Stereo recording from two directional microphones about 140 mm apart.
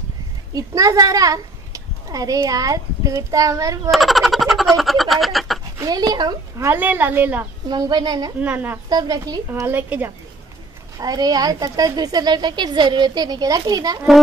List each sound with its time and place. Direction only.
0.6 s a child's voice: 25° right (ahead or behind)
3.9 s a sound: centre (ahead or behind)
5.8 s a woman's voice: 30° right (ahead or behind)
6.7 s a woman's voice: 15° right (ahead or behind)
7.7 s a child's voice: 30° right (ahead or behind)
8.4 s a woman's voice: 10° right (ahead or behind)
8.8 s a child's voice: 25° right (ahead or behind)
9.5 s a woman's voice: 15° right (ahead or behind)
11.0 s a child's voice: 25° right (ahead or behind)